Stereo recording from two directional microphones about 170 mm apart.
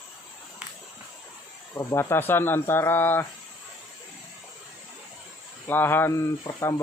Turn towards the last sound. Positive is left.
turn(degrees=15)  # may be behind; listen again after turning